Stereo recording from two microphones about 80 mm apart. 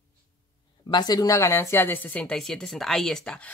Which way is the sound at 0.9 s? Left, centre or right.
Left.